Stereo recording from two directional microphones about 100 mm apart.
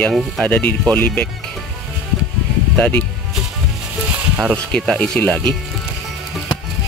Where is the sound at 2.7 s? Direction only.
10° left (ahead or behind).